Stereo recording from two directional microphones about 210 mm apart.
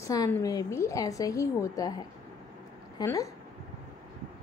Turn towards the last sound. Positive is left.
turn(degrees=15)  # may be behind; listen again after turning